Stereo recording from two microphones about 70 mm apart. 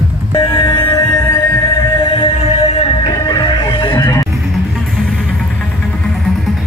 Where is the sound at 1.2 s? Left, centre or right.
Left.